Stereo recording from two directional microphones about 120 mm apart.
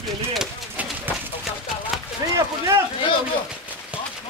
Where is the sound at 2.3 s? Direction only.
25° right (ahead or behind).